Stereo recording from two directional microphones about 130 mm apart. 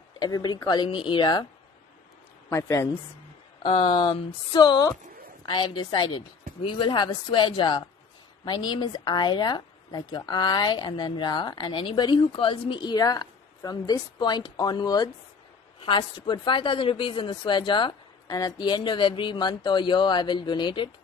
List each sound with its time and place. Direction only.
0.2 s a woman's voice: 30° left (ahead or behind)
2.5 s a woman's voice: 25° left (ahead or behind)
3.6 s a woman's voice: 40° left (ahead or behind)